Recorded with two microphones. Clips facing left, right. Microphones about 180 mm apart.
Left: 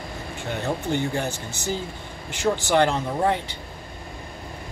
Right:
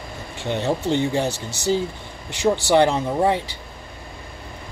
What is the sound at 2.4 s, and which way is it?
Speech, 15° right (ahead or behind).